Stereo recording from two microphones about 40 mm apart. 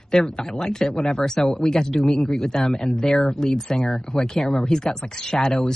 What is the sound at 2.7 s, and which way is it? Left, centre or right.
Speech, centre.